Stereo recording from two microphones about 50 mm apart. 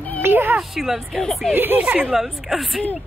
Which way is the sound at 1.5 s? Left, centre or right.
Right.